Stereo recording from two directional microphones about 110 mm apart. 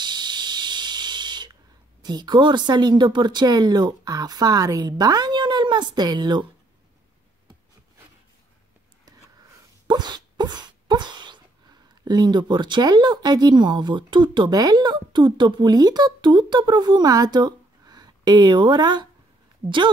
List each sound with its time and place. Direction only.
0.0 s owl: 40° right (ahead or behind)
9.8 s a sound: 40° right (ahead or behind)
11.9 s speech: 40° right (ahead or behind)